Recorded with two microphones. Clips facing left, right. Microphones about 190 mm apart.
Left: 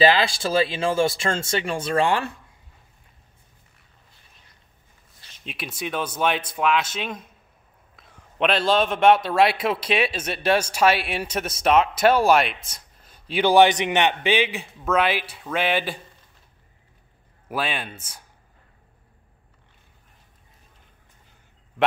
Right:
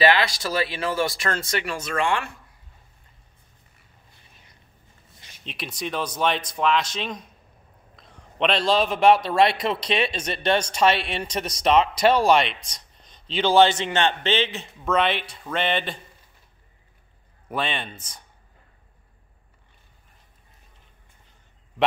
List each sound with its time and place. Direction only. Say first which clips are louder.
0.0 s speech: left 2 dB; 30° left (ahead or behind)
5.4 s a man's voice: even; 5° left (ahead or behind)
17.5 s a man's voice: even; 5° left (ahead or behind)